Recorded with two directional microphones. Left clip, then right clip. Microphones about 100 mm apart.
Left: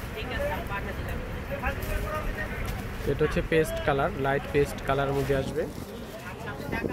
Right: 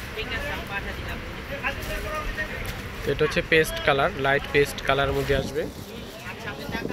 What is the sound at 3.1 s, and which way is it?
Speech, 5° left (ahead or behind).